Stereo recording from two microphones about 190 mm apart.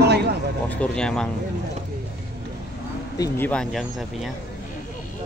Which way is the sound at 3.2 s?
10° left (ahead or behind).